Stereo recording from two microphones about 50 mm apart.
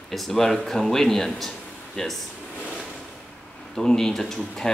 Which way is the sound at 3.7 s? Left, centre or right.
Centre.